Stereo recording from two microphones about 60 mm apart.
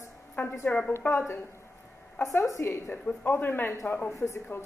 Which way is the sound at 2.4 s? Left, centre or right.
Left.